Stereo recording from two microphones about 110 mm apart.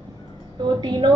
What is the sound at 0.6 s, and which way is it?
Speech, 40° right (ahead or behind).